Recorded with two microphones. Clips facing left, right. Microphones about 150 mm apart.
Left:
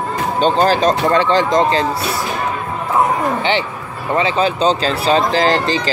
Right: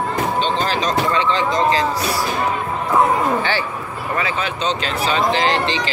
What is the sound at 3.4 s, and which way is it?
Speech, 20° left (ahead or behind).